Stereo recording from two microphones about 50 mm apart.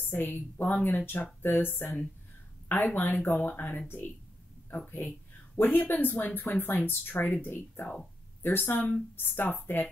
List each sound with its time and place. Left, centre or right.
0.0 s speech: left
5.6 s speech: left